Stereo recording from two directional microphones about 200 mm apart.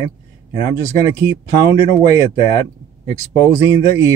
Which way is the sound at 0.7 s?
15° right (ahead or behind).